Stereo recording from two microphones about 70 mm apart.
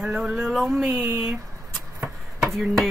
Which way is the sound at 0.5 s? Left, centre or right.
Centre.